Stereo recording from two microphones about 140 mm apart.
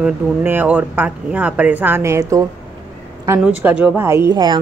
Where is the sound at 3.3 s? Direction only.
10° right (ahead or behind).